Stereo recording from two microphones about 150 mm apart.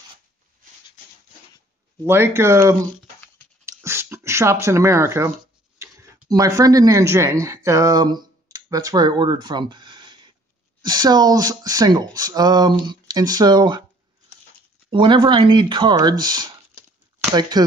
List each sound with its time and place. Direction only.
2.0 s speech: 15° right (ahead or behind)
3.6 s a sound: 15° right (ahead or behind)
5.8 s speech: 20° right (ahead or behind)
14.9 s speech: 35° right (ahead or behind)